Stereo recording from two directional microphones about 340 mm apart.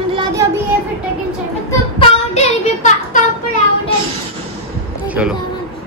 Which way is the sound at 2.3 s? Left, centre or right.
Left.